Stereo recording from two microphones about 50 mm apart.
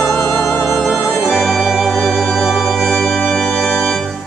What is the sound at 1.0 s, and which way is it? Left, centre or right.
Organ, right.